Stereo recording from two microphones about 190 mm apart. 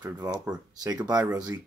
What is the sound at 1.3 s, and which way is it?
Speech, 20° right (ahead or behind).